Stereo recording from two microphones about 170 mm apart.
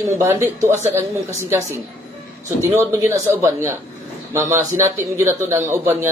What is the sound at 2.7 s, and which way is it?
A man's voice, 15° right (ahead or behind).